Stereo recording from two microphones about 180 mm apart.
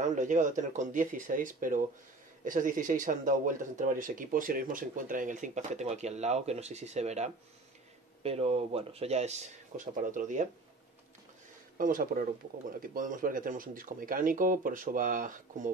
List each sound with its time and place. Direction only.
0.0 s speech: 45° right (ahead or behind)
11.8 s speech: 50° right (ahead or behind)